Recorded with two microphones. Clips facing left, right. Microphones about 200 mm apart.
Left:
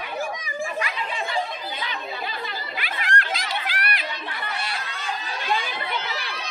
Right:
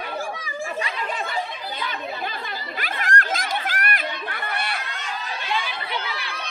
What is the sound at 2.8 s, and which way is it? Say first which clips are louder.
Chatter: right 3 dB; 45° right (ahead or behind).